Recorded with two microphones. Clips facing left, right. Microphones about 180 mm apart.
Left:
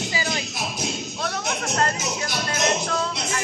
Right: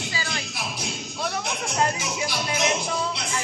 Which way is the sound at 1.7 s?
10° right (ahead or behind).